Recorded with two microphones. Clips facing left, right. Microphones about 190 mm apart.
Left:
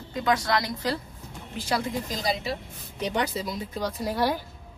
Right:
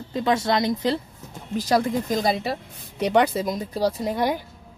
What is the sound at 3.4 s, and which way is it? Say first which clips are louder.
Speech: right 7 dB; 40° right (ahead or behind).